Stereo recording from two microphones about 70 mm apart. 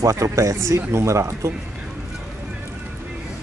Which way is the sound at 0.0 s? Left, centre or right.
Right.